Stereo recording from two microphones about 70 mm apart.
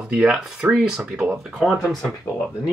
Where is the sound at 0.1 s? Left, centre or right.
Centre.